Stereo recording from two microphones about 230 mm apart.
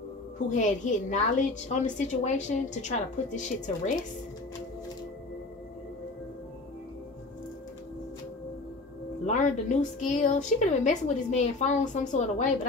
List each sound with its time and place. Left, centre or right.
0.5 s a woman's voice: left
9.2 s a woman's voice: left